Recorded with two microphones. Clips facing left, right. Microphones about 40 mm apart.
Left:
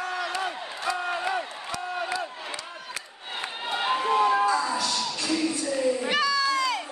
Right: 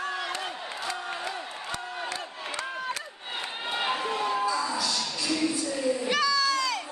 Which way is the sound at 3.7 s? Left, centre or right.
Centre.